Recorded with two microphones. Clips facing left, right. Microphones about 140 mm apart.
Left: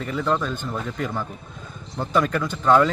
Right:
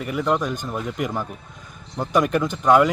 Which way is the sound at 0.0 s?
10° right (ahead or behind).